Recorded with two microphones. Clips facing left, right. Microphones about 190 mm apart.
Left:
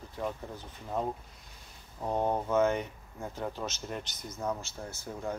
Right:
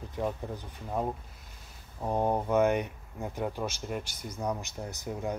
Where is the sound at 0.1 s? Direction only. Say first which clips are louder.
Right 3 dB; 15° right (ahead or behind).